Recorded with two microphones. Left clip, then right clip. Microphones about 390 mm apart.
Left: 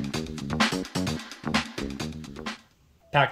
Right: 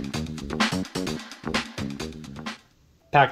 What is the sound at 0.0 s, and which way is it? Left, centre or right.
Music, centre.